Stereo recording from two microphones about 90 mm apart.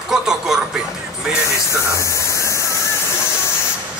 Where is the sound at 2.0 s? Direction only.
35° left (ahead or behind).